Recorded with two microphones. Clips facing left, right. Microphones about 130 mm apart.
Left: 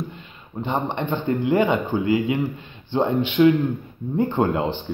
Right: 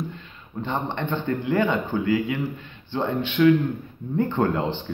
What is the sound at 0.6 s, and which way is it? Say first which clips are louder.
Speech: left 3 dB; 10° left (ahead or behind).